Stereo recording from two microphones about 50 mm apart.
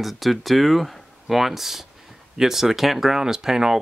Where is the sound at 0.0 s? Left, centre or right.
Centre.